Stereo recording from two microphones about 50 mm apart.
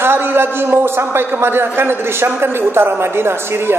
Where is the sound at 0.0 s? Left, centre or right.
Right.